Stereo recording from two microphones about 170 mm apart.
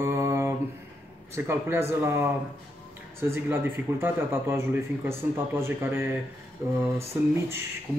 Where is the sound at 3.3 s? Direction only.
15° right (ahead or behind).